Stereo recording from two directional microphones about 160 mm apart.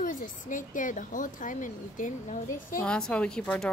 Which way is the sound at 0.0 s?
55° left (ahead or behind).